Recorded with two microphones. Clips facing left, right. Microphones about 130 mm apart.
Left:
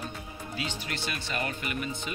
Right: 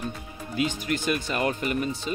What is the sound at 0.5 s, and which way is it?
Speech, 45° right (ahead or behind).